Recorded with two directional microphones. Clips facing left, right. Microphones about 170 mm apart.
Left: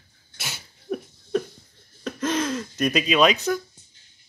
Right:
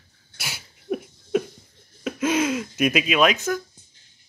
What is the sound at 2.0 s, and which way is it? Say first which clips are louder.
Speech: right 3 dB; 10° right (ahead or behind).